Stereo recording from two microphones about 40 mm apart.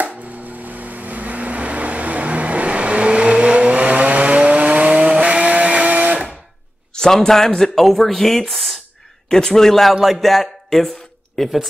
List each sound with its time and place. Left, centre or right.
0.0 s a sound: right
5.1 s vehicle: right
6.9 s speech: centre